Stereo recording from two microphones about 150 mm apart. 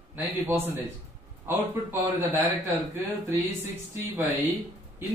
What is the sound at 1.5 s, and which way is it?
Speech, 15° right (ahead or behind).